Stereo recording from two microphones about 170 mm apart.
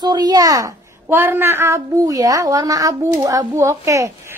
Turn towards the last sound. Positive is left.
turn(degrees=-20)  # may be behind; listen again after turning